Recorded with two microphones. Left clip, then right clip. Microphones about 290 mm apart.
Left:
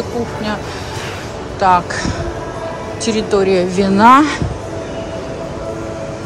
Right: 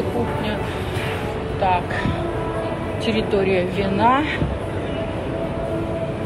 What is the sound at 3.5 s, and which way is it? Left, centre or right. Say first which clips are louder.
Speech: left 7 dB; left.